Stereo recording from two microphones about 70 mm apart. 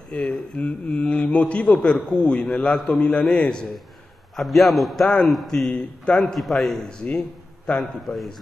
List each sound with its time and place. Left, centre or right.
0.1 s a man's voice: centre
4.4 s a man's voice: centre
6.9 s a man's voice: centre